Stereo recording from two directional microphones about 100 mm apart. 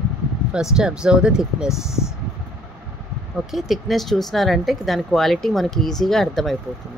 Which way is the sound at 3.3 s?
Centre (ahead or behind).